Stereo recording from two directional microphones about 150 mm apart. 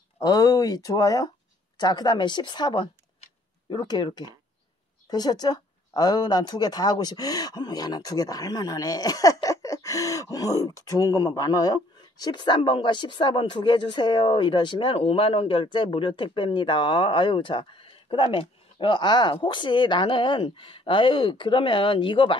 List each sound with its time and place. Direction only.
0.2 s speech: 25° left (ahead or behind)